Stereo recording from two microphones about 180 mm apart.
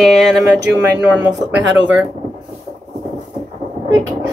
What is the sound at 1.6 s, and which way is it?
Speech, 90° right.